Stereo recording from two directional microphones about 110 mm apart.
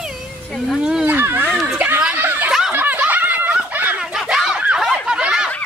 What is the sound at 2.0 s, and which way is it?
Snicker, 15° right (ahead or behind).